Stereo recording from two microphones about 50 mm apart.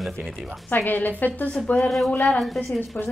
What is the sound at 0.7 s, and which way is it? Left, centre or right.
A woman's voice, left.